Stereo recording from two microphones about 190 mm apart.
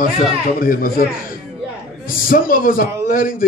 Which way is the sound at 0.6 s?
50° left (ahead or behind).